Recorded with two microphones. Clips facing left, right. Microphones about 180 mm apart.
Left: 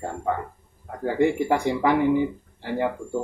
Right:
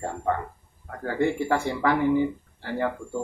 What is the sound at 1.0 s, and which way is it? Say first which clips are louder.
Speech: left 3 dB; 15° left (ahead or behind).